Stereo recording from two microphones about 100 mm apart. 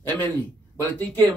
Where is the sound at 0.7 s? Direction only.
20° left (ahead or behind).